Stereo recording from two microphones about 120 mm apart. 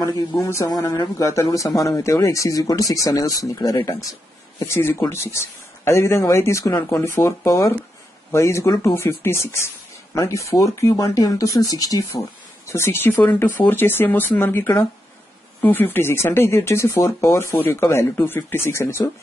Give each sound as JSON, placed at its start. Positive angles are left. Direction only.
{"t": 0.4, "sound": "speech", "side_deg": 30}